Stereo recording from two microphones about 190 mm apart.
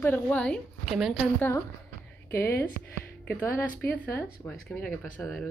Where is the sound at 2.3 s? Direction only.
15° left (ahead or behind).